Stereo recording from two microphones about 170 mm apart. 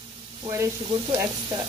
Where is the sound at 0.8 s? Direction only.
30° right (ahead or behind).